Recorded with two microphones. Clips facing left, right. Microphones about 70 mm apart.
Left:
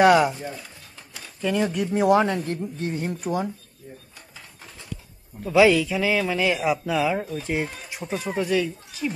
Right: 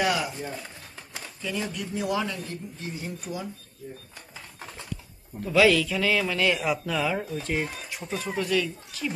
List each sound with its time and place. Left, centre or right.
0.0 s speech: left
1.4 s speech: left
5.4 s speech: centre